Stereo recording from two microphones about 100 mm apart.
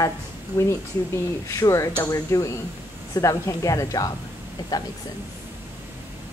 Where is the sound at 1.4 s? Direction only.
30° left (ahead or behind).